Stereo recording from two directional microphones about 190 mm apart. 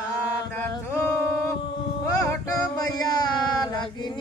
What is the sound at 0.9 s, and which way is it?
Singing, 15° left (ahead or behind).